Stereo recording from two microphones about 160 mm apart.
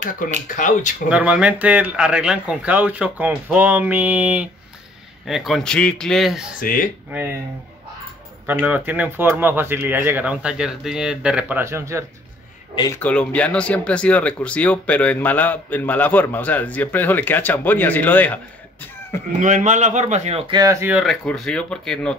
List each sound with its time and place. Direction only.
0.2 s speech: 55° left (ahead or behind)
1.0 s a man's voice: 5° right (ahead or behind)
6.6 s speech: 60° left (ahead or behind)
7.1 s speech: 15° right (ahead or behind)
8.5 s speech: 10° right (ahead or behind)
12.7 s speech: 25° left (ahead or behind)
13.0 s speech: 10° left (ahead or behind)
19.3 s a man's voice: 50° right (ahead or behind)
21.0 s a man's voice: 5° left (ahead or behind)